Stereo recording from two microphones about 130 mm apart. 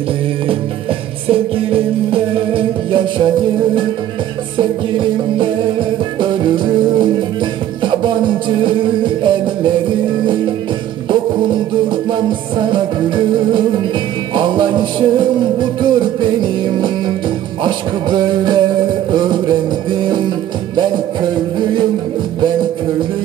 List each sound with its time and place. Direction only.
1.3 s music: 45° right (ahead or behind)
5.4 s music: 40° right (ahead or behind)
11.1 s music: 40° right (ahead or behind)
20.1 s music: 35° right (ahead or behind)